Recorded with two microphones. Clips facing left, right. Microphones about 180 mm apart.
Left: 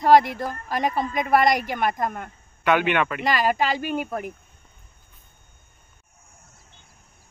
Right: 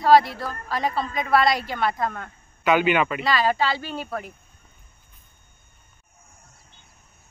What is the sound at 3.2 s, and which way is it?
A woman's voice, 15° left (ahead or behind).